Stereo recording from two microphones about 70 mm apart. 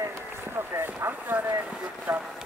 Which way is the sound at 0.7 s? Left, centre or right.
Right.